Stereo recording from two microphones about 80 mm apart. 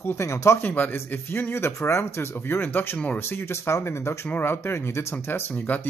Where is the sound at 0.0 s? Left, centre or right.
Left.